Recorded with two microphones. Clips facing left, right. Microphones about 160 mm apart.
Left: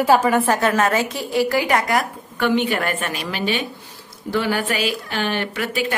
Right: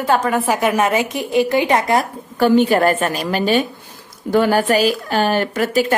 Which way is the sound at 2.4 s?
40° right (ahead or behind).